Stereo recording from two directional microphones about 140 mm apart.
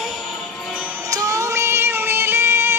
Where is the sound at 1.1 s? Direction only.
25° right (ahead or behind).